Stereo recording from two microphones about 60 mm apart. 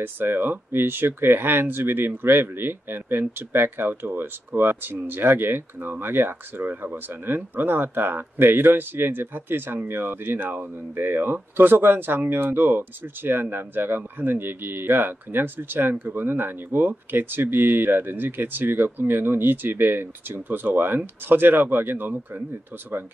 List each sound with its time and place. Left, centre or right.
0.0 s speech: right